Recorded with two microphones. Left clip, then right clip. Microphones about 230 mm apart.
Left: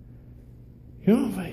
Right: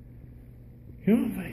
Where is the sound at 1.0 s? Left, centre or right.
Centre.